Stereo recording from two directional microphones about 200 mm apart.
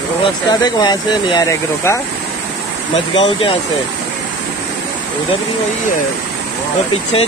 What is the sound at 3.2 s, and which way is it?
Speech, 25° left (ahead or behind).